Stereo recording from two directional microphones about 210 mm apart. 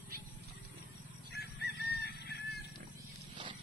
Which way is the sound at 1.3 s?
50° left (ahead or behind).